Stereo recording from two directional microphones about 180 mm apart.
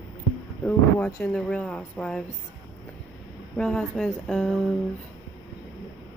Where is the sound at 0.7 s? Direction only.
5° left (ahead or behind).